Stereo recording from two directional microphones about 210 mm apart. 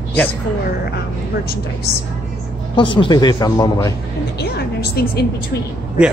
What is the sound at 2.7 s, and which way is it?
A man's voice, 25° left (ahead or behind).